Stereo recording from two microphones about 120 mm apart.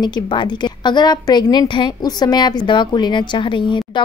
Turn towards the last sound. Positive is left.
turn(degrees=40)  # may be behind; listen again after turning